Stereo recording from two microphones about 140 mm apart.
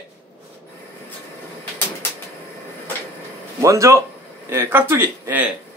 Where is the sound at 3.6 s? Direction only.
20° right (ahead or behind).